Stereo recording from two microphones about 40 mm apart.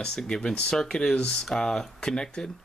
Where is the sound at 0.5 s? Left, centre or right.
Centre.